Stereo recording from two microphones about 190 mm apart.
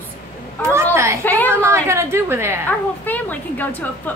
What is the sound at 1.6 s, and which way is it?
Speech, 15° right (ahead or behind).